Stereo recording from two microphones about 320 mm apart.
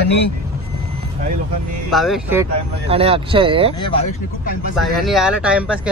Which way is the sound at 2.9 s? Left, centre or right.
Centre.